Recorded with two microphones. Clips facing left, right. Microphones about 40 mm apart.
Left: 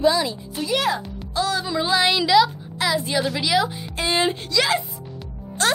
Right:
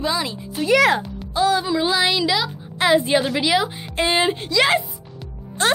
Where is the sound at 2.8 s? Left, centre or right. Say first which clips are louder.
Right 6 dB; right.